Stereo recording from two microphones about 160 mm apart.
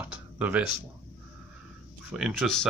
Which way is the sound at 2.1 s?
5° right (ahead or behind).